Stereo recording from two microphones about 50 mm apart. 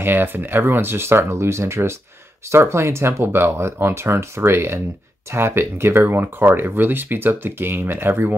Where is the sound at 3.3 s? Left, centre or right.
Right.